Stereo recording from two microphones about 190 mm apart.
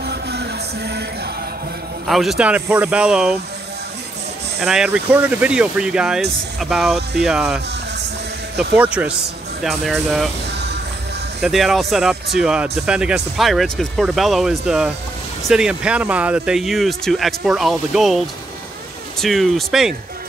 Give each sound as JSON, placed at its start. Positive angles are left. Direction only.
{"t": 0.0, "sound": "music", "side_deg": -60}
{"t": 2.0, "sound": "speech", "side_deg": 0}
{"t": 4.6, "sound": "speech", "side_deg": 0}
{"t": 8.7, "sound": "speech", "side_deg": -5}
{"t": 11.4, "sound": "speech", "side_deg": 0}